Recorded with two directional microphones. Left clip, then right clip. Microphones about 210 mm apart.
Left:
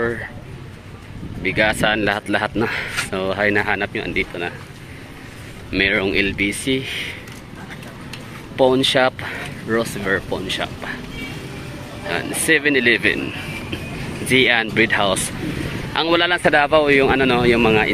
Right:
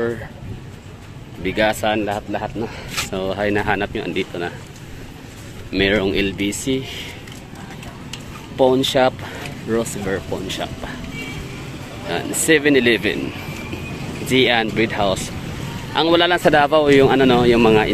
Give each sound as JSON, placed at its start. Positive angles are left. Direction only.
{"t": 1.4, "sound": "speech", "side_deg": -15}
{"t": 1.8, "sound": "speech", "side_deg": 10}
{"t": 2.7, "sound": "speech", "side_deg": 0}
{"t": 5.7, "sound": "speech", "side_deg": -15}
{"t": 8.1, "sound": "speech", "side_deg": -10}
{"t": 12.1, "sound": "speech", "side_deg": -15}
{"t": 14.3, "sound": "speech", "side_deg": -10}